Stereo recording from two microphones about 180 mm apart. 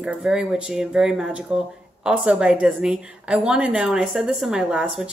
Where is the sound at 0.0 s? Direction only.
5° right (ahead or behind).